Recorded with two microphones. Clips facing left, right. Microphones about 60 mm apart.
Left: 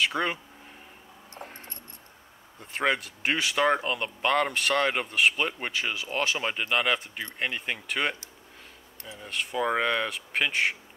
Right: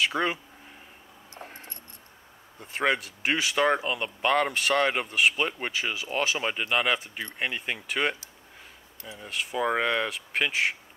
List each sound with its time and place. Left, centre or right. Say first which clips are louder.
0.0 s speech: right 1 dB; centre
1.4 s music: even; centre
2.6 s speech: right 1 dB; centre